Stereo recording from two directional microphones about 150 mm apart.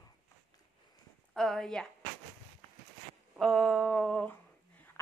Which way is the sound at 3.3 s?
Centre (ahead or behind).